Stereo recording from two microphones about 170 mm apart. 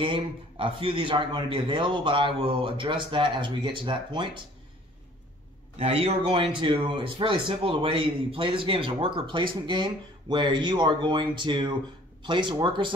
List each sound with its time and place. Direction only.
0.0 s a man's voice: 30° right (ahead or behind)
5.8 s a man's voice: 40° right (ahead or behind)